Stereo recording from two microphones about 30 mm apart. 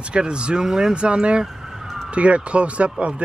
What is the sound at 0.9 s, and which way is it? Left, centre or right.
Speech, right.